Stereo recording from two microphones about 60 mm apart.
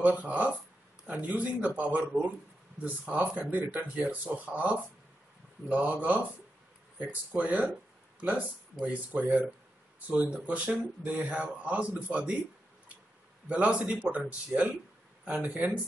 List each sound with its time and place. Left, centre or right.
0.0 s speech: right
8.8 s speech: right
13.5 s speech: right